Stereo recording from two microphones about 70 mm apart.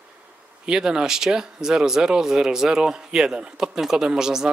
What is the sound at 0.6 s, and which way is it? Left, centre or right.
Speech, centre.